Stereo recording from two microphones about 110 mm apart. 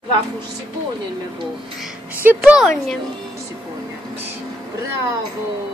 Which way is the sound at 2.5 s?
Centre (ahead or behind).